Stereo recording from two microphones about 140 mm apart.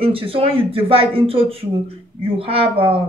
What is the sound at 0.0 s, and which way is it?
A woman's voice, 40° right (ahead or behind).